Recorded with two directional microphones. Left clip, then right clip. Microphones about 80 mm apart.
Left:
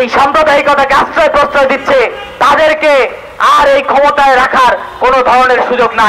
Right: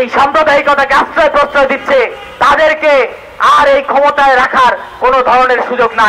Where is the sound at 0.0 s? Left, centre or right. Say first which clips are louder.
Left 1 dB; left.